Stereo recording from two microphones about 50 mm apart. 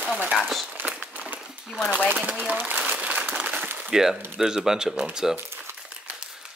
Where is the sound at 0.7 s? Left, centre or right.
Right.